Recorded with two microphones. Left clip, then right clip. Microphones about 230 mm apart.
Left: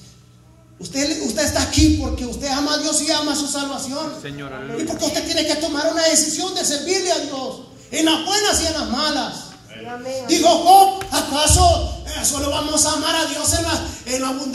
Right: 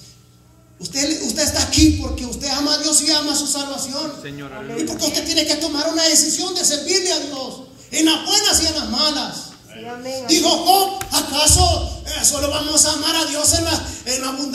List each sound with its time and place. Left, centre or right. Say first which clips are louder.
0.9 s speech: even; right